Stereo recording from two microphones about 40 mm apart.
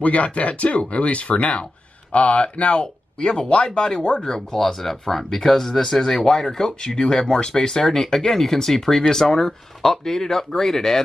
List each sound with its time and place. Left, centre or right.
0.0 s speech: left; by 11.0 s centre